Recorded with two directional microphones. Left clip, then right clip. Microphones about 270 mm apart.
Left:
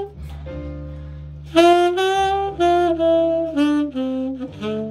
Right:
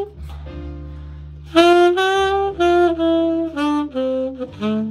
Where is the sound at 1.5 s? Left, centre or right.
Centre.